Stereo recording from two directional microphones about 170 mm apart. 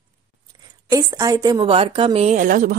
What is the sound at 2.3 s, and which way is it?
Speech, 55° right (ahead or behind).